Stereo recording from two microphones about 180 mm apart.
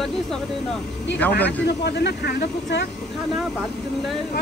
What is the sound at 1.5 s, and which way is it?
Speech, 65° left (ahead or behind).